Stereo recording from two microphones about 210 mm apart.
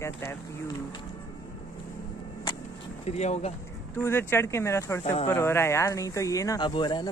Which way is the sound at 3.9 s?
10° left (ahead or behind).